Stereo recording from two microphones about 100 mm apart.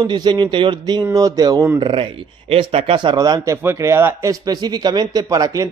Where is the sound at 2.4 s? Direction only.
75° right (ahead or behind); by 3.5 s 40° right (ahead or behind).